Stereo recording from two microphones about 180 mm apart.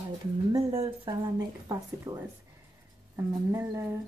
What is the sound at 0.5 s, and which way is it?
Speech, 30° right (ahead or behind).